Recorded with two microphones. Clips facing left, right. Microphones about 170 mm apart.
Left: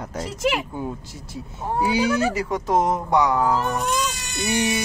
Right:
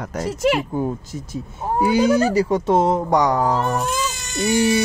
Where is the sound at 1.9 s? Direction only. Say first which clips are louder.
Right 5 dB; 40° right (ahead or behind).